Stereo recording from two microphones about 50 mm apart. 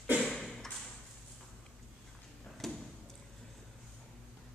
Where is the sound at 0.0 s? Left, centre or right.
Right.